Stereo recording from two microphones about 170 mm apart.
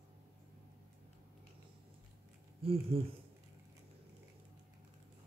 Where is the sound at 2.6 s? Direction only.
35° right (ahead or behind).